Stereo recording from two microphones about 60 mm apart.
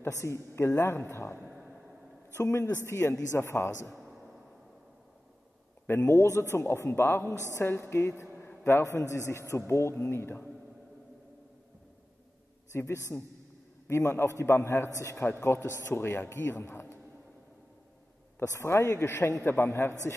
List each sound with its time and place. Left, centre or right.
0.1 s a man's voice: left
3.9 s a sound: centre
5.9 s a man's voice: left
12.7 s a man's voice: left
15.0 s a man's voice: left
15.4 s a man's voice: left
16.6 s a sound: left
18.5 s a man's voice: left